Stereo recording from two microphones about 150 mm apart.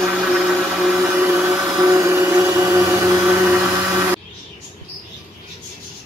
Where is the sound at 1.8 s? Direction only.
20° right (ahead or behind).